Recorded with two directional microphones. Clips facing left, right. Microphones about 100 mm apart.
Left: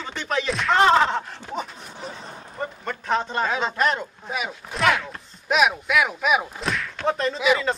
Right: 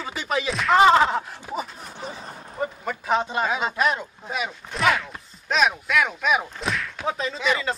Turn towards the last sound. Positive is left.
turn(degrees=0)  # may be behind; listen again after turning